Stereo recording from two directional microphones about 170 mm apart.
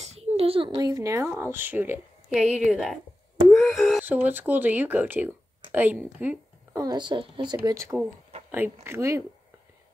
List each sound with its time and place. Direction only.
0.0 s a sound: 40° right (ahead or behind)
0.7 s a woman's voice: 20° right (ahead or behind); by 4.0 s centre (ahead or behind)
4.0 s a woman's voice: 10° right (ahead or behind)
6.8 s speech: 25° right (ahead or behind)
7.6 s a woman's voice: 15° right (ahead or behind)